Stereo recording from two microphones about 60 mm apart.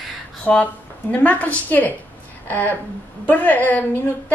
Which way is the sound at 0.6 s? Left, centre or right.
Left.